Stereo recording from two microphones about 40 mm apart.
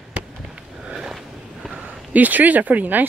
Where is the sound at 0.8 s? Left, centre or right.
Centre.